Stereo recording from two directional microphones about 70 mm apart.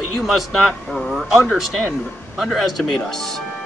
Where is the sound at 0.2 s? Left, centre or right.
Centre.